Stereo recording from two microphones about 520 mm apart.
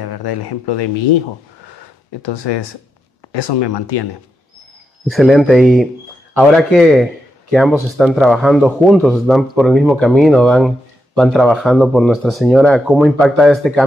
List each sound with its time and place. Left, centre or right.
0.0 s speech: left
2.2 s speech: left
5.1 s speech: centre